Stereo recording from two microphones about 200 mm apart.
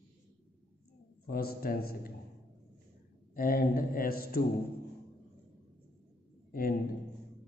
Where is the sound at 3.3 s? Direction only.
45° left (ahead or behind).